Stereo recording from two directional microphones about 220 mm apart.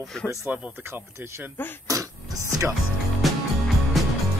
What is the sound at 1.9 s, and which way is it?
Beatboxing, 15° right (ahead or behind).